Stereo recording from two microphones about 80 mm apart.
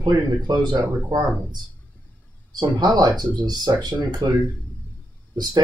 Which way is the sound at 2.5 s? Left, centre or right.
Right.